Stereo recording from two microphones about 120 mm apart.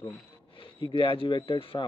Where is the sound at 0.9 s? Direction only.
45° left (ahead or behind).